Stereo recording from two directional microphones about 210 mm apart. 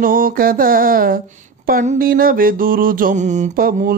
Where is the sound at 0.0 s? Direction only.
40° right (ahead or behind).